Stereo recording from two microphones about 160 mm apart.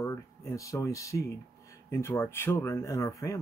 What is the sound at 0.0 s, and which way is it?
Speech, 20° left (ahead or behind).